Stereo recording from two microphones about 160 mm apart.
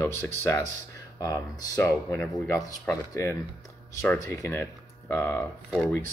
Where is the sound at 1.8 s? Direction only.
15° left (ahead or behind).